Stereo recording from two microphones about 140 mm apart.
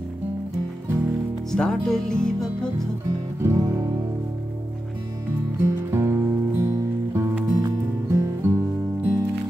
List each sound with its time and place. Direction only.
1.5 s speech: 5° left (ahead or behind)
3.3 s music: 20° right (ahead or behind)
5.6 s music: 20° right (ahead or behind)